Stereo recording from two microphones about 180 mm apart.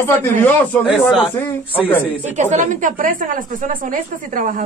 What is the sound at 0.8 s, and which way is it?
Speech, centre (ahead or behind).